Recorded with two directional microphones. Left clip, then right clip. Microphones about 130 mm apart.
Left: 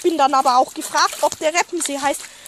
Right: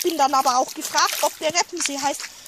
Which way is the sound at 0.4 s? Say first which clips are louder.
Left 4 dB; 30° left (ahead or behind).